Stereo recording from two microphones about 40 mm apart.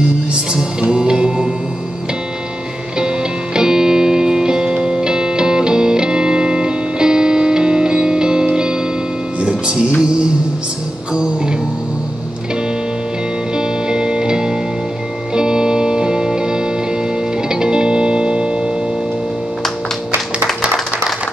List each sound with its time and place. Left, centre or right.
0.3 s music: right
3.5 s music: centre
13.6 s music: right